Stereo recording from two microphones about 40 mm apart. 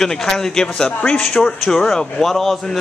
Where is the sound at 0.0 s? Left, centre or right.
Centre.